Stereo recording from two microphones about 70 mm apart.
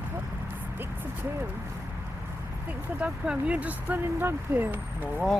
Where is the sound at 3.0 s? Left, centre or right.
Centre.